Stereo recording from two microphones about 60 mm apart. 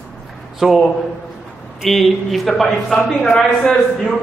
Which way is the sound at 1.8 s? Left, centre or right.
Centre.